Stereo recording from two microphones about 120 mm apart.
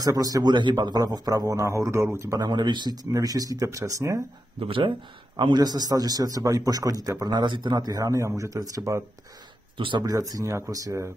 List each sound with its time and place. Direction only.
0.0 s a man's voice: 30° right (ahead or behind)
4.6 s a man's voice: 50° right (ahead or behind); by 9.0 s 30° right (ahead or behind)
9.8 s speech: 45° right (ahead or behind)
10.0 s speech: 30° right (ahead or behind)